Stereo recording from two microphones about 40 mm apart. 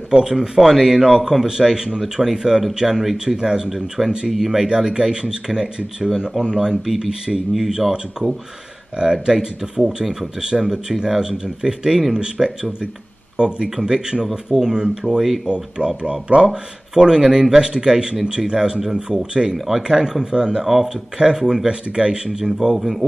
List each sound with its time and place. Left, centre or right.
0.1 s speech: centre
4.6 s speech: right
15.4 s speech: right
16.4 s speech: centre